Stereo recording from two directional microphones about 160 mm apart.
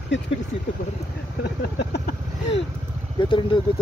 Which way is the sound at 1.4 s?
90° left.